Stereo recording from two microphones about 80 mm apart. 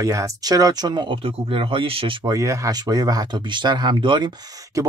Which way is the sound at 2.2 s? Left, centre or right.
Right.